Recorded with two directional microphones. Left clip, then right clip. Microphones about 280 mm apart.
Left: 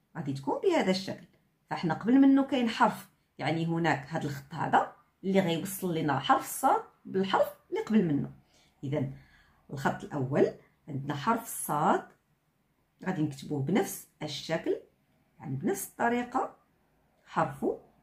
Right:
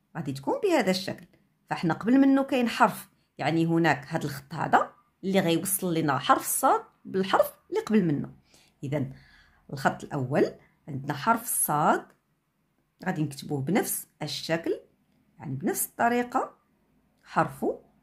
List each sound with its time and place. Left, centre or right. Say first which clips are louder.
0.1 s speech: right 3 dB; right
8.5 s a sound: right 3 dB; right
9.7 s speech: right 4 dB; right
13.0 s speech: right 2 dB; right